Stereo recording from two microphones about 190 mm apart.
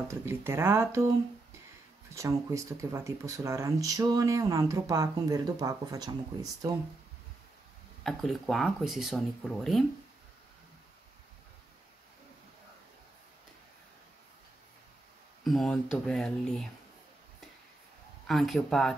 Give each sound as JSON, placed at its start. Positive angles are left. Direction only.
{"t": 0.1, "sound": "speech", "side_deg": -15}
{"t": 2.1, "sound": "speech", "side_deg": -15}
{"t": 8.0, "sound": "speech", "side_deg": 0}
{"t": 15.4, "sound": "speech", "side_deg": 0}
{"t": 18.2, "sound": "speech", "side_deg": 0}